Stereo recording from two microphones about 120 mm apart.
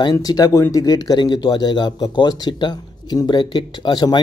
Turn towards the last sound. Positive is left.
turn(degrees=35)  # may be behind; listen again after turning